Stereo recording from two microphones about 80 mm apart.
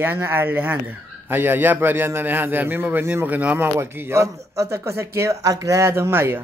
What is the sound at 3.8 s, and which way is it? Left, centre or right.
A man's voice, right.